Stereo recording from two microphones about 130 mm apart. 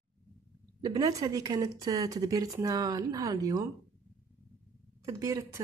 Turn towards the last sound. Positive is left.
turn(degrees=-20)  # may be behind; listen again after turning